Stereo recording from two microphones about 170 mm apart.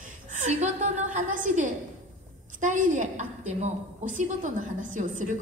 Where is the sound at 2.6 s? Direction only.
50° right (ahead or behind).